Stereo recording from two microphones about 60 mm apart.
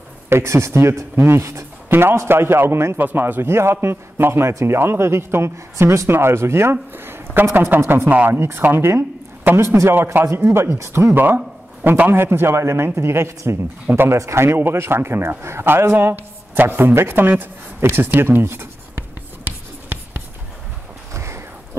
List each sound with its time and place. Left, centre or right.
0.3 s a man's voice: right
1.9 s speech: right
3.0 s a man's voice: right
8.7 s a sound: right
10.3 s a man's voice: right
11.8 s speech: right
14.1 s a man's voice: right
21.1 s a sound: right